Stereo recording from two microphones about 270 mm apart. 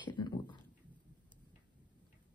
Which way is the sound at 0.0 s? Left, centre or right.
Centre.